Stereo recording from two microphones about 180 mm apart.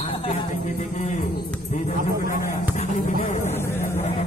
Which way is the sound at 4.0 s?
40° left (ahead or behind).